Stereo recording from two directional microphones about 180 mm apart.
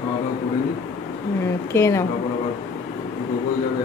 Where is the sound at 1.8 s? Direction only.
15° left (ahead or behind).